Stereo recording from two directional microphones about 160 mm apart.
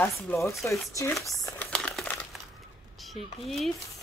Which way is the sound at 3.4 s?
Centre (ahead or behind).